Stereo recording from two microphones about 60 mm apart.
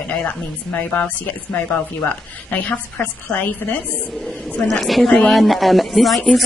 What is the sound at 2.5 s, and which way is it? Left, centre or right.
A woman's voice, left.